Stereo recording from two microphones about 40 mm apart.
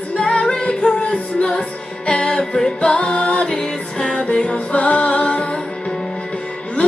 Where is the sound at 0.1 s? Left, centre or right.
Left.